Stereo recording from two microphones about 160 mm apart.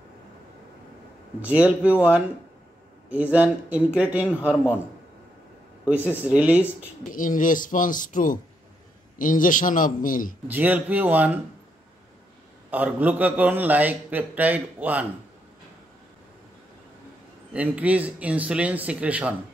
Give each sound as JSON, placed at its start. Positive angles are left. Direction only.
{"t": 1.4, "sound": "a man's voice", "side_deg": -10}
{"t": 6.0, "sound": "a man's voice", "side_deg": -10}
{"t": 7.1, "sound": "speech", "side_deg": 55}
{"t": 10.5, "sound": "a man's voice", "side_deg": -10}
{"t": 12.7, "sound": "a man's voice", "side_deg": -10}
{"t": 17.5, "sound": "a man's voice", "side_deg": -10}